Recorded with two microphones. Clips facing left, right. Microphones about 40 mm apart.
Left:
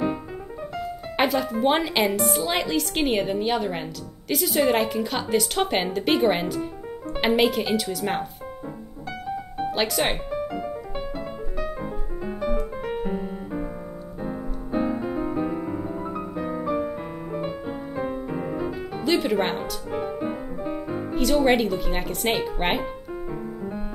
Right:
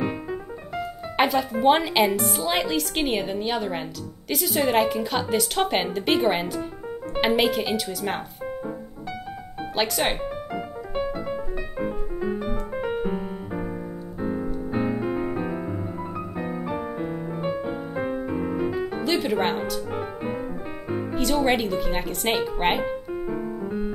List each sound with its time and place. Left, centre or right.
0.0 s a woman's voice: centre
9.6 s music: centre
10.5 s music: centre
14.2 s music: centre
17.0 s music: centre
17.9 s music: right
18.3 s music: centre
19.9 s music: centre
21.2 s a woman's voice: centre